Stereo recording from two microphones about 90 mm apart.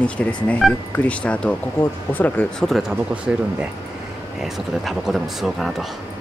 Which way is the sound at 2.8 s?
10° right (ahead or behind).